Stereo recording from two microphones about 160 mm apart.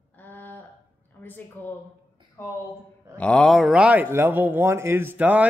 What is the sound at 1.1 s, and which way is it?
Speech, 10° left (ahead or behind).